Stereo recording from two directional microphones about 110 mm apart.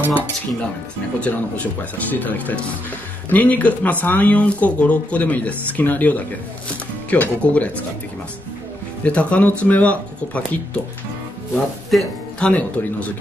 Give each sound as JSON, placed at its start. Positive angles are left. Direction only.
{"t": 1.2, "sound": "speech", "side_deg": 15}
{"t": 9.0, "sound": "speech", "side_deg": 10}
{"t": 11.5, "sound": "speech", "side_deg": 0}